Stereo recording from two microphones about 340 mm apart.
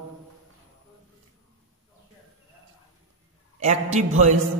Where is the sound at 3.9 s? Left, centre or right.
Right.